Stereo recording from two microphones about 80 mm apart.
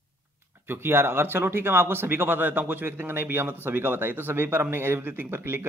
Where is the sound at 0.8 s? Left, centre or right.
Right.